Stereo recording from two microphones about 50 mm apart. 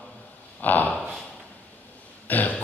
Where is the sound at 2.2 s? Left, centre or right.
Left.